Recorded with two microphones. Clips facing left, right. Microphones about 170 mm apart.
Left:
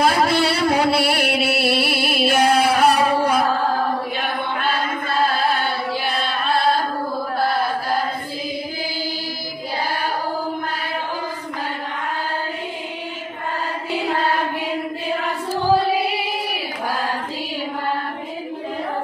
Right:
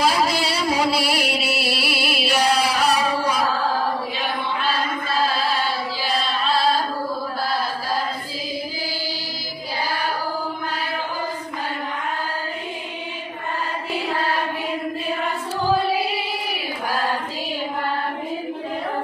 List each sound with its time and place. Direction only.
0.0 s music: 55° left (ahead or behind)
4.2 s chant: 55° left (ahead or behind)